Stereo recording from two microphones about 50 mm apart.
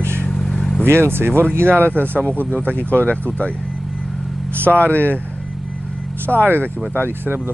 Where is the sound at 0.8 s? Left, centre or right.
Right.